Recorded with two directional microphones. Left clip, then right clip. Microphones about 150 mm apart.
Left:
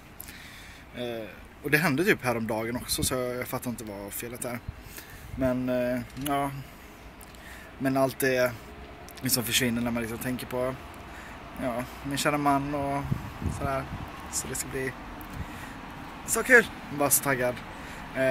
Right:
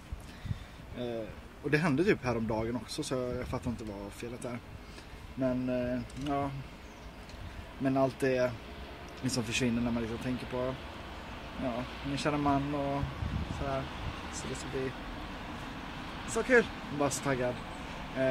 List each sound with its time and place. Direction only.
0.9 s speech: 10° left (ahead or behind)
5.4 s speech: 30° left (ahead or behind)
7.8 s speech: 20° left (ahead or behind)
14.3 s speech: 20° left (ahead or behind)
16.3 s speech: 15° left (ahead or behind)